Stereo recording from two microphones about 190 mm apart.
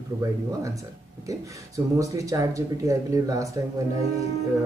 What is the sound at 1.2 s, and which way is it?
Speech, 15° right (ahead or behind).